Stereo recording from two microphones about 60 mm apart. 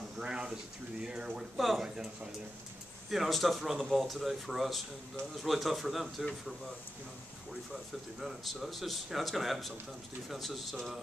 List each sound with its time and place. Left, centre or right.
0.2 s a man's voice: centre
3.1 s a man's voice: centre
7.7 s a man's voice: centre